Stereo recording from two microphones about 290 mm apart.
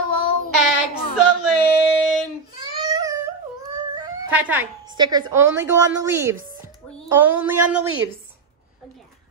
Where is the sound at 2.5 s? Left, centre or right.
Centre.